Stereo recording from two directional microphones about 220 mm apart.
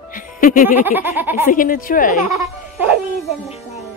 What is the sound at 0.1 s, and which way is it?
Music, 40° left (ahead or behind).